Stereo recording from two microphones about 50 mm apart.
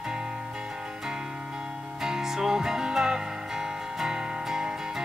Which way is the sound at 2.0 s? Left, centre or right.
Centre.